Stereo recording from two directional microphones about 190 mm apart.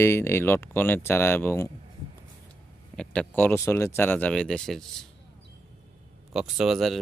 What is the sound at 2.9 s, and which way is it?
Speech, 5° left (ahead or behind).